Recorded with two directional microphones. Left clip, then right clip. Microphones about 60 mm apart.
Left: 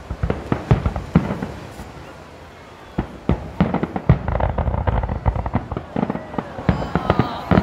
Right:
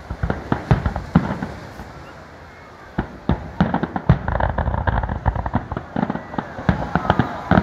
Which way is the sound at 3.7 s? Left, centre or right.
Right.